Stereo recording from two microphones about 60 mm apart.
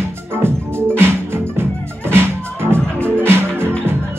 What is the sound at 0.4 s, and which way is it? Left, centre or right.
Music, right.